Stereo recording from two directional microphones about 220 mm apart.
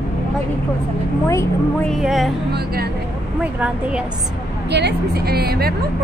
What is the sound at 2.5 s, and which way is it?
Speech, 45° right (ahead or behind).